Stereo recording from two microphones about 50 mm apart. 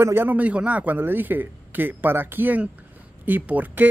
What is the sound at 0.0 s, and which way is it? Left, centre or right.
Speech, right.